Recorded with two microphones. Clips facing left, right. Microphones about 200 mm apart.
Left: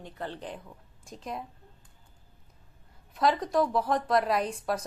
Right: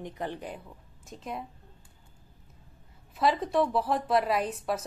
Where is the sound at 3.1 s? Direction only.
Centre (ahead or behind).